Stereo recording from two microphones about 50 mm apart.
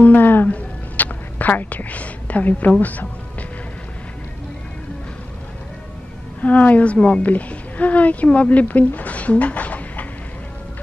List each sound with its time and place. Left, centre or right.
0.0 s a sound: left
2.8 s speech: left
6.4 s a woman's voice: left